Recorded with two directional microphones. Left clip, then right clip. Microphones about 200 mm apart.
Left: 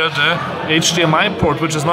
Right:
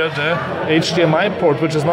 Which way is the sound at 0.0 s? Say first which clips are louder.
Left 3 dB; 15° right (ahead or behind).